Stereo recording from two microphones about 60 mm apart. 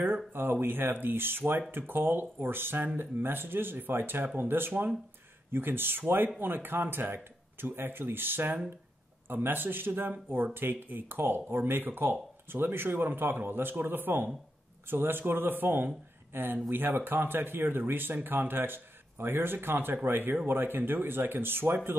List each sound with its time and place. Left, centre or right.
0.3 s speech: right